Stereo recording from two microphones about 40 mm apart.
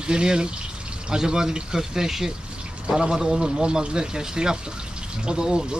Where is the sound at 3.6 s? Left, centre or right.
Right.